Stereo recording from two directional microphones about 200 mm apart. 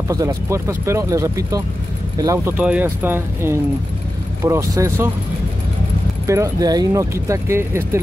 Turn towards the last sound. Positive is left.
turn(degrees=-15)  # may be behind; listen again after turning